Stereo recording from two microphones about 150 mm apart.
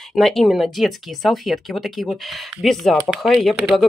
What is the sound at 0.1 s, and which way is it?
Speech, centre (ahead or behind).